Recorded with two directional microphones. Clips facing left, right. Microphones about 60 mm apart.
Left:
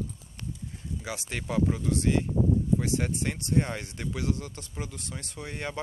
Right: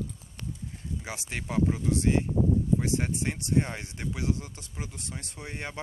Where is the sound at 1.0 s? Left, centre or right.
Right.